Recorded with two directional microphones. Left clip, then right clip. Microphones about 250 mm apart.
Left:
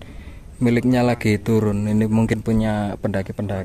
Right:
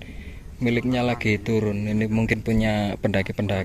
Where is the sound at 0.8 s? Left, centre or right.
Left.